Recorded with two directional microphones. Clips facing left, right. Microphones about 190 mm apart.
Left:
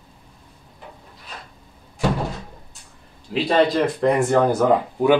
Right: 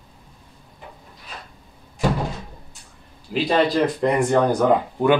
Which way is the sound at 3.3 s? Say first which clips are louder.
Left 1 dB; centre (ahead or behind).